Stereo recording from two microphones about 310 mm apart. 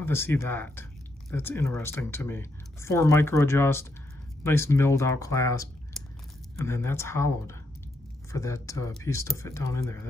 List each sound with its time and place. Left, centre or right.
0.0 s speech: centre